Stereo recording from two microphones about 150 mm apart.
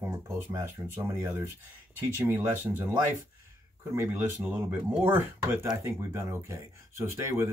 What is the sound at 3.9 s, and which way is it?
Speech, 20° right (ahead or behind).